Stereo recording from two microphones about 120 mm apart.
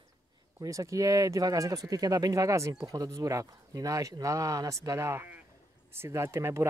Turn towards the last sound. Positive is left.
turn(degrees=-25)  # may be behind; listen again after turning